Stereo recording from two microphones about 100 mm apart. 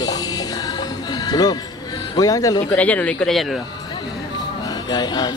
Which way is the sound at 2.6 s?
15° left (ahead or behind).